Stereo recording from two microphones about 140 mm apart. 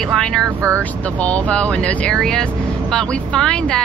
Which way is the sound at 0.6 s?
20° right (ahead or behind).